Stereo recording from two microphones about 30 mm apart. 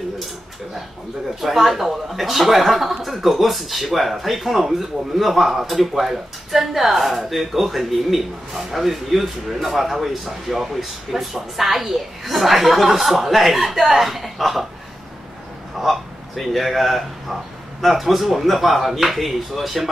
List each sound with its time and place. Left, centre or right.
1.4 s speech: centre
15.8 s speech: centre